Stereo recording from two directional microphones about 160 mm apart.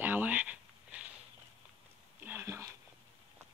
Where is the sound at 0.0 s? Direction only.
10° right (ahead or behind).